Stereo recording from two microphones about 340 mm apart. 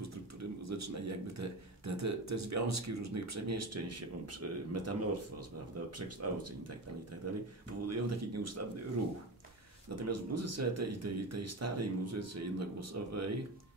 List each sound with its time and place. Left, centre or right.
0.0 s a sound: right
1.9 s speech: right
5.9 s speech: right
9.9 s speech: right